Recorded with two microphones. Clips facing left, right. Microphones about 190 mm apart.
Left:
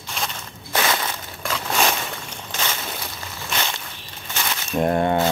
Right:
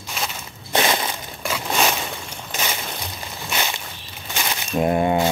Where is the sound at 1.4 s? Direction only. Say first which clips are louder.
Right 1 dB; 10° right (ahead or behind).